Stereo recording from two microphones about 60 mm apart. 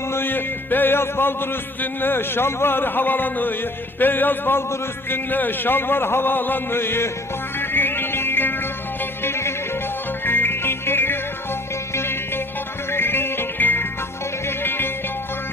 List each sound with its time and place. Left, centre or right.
0.1 s a sound: left
4.0 s a man's voice: left
7.7 s music: left